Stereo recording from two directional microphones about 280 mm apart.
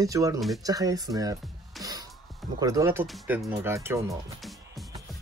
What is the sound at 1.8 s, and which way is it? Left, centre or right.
Music, centre.